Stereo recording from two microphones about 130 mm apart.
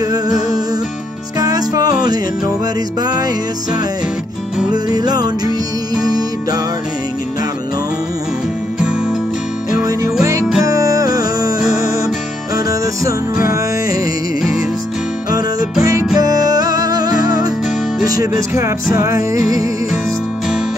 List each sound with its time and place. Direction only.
0.0 s music: 30° right (ahead or behind)
4.8 s music: 30° right (ahead or behind)
10.6 s music: 25° right (ahead or behind)
15.8 s music: 25° right (ahead or behind)